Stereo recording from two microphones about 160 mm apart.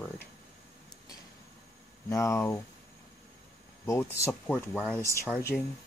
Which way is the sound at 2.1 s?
15° left (ahead or behind).